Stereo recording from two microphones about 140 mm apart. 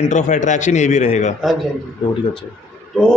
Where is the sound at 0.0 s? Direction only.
60° left (ahead or behind).